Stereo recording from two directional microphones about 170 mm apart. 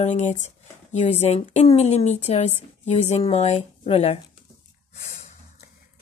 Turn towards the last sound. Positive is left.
turn(degrees=35)  # may be behind; listen again after turning